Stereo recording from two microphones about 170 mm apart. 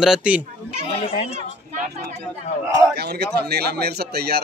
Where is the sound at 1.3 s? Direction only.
45° right (ahead or behind).